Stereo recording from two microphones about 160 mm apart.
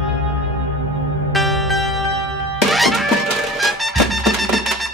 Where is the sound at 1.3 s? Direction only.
Centre (ahead or behind).